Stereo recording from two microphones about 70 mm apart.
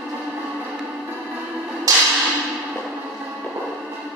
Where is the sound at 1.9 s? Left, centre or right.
Right.